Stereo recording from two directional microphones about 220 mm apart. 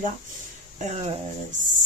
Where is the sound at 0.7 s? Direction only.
30° right (ahead or behind).